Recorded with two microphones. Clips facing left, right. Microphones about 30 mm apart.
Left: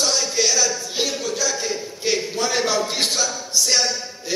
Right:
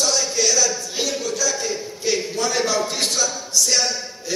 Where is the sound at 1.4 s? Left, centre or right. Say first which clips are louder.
Even; centre.